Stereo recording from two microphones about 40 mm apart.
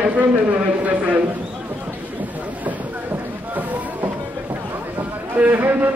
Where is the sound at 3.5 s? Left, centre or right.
Right.